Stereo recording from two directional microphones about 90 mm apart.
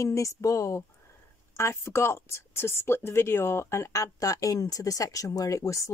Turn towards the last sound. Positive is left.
turn(degrees=35)  # may be behind; listen again after turning